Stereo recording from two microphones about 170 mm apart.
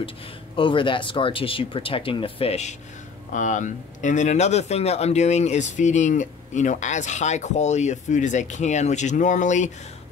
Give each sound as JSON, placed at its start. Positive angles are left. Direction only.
{"t": 0.6, "sound": "speech", "side_deg": 30}
{"t": 3.3, "sound": "speech", "side_deg": 45}